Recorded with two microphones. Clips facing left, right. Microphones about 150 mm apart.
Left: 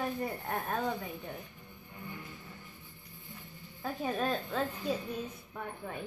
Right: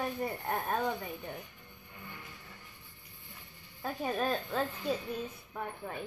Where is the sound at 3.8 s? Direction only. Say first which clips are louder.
Even; centre (ahead or behind).